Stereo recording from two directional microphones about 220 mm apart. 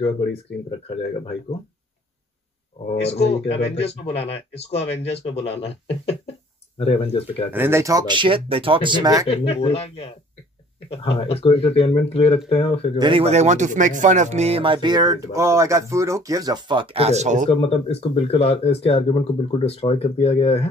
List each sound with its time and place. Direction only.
3.1 s speech: 30° left (ahead or behind)
6.8 s speech: 25° left (ahead or behind)
7.5 s speech: 10° right (ahead or behind)
9.3 s speech: 25° left (ahead or behind)
13.0 s speech: 25° right (ahead or behind)
17.5 s speech: 25° left (ahead or behind)